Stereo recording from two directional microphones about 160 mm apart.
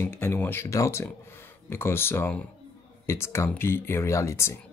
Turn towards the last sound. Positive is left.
turn(degrees=15)  # may be behind; listen again after turning